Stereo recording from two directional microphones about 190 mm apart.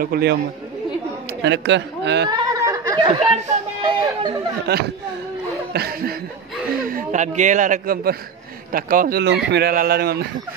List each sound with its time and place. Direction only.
0.0 s speech: 55° right (ahead or behind)
1.4 s a man's voice: 65° right (ahead or behind)
2.2 s a sound: 20° right (ahead or behind)
3.8 s speech: 20° right (ahead or behind)
4.6 s speech: 60° right (ahead or behind)
5.7 s chuckle: 55° right (ahead or behind)
6.8 s a man's voice: 45° right (ahead or behind)
9.2 s speech: 65° right (ahead or behind)